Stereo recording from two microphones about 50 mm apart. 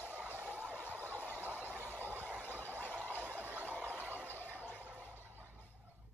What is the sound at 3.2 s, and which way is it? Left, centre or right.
Turkey, right.